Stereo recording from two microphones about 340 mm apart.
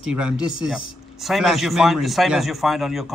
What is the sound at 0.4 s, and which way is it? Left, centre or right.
Speech, right.